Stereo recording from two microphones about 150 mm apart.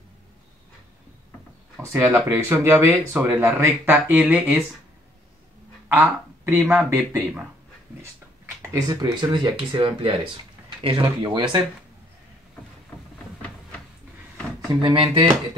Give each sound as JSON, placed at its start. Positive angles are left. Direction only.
{"t": 1.9, "sound": "speech", "side_deg": -15}
{"t": 5.9, "sound": "a sound", "side_deg": -20}
{"t": 6.7, "sound": "speech", "side_deg": -15}
{"t": 8.6, "sound": "speech", "side_deg": -25}
{"t": 14.8, "sound": "speech", "side_deg": -35}